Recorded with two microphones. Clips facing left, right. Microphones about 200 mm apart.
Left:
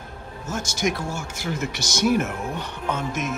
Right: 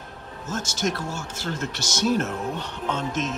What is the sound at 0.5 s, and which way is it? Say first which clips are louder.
A man's voice: left 1 dB; 10° left (ahead or behind).